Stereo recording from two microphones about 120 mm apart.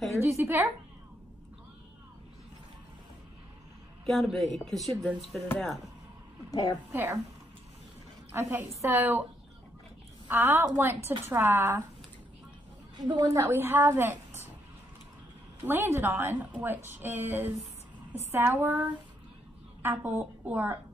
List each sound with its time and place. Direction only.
0.2 s a woman's voice: 20° right (ahead or behind)
4.0 s speech: centre (ahead or behind)
6.5 s a woman's voice: 35° left (ahead or behind)
6.9 s a woman's voice: 15° right (ahead or behind)
8.3 s a woman's voice: 15° right (ahead or behind)
10.2 s a woman's voice: 15° right (ahead or behind)
12.9 s a woman's voice: 40° right (ahead or behind)
13.3 s a woman's voice: 20° right (ahead or behind)
15.6 s a woman's voice: 20° right (ahead or behind)